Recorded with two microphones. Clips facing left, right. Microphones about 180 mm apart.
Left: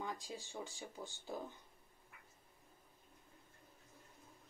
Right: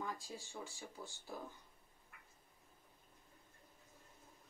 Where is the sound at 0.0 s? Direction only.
15° left (ahead or behind).